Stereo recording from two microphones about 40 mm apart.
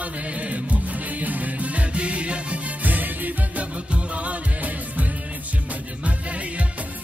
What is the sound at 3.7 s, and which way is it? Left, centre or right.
Music, right.